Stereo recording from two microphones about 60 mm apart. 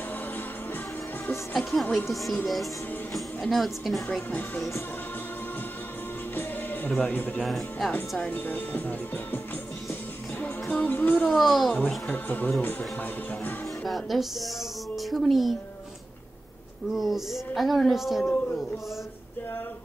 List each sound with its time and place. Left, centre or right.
1.5 s speech: centre
4.6 s music: left
6.3 s music: left
7.0 s speech: left
7.4 s speech: centre
8.2 s speech: left
10.4 s music: left
11.3 s speech: centre
12.1 s speech: left
13.8 s speech: centre
16.9 s speech: centre
18.2 s speech: left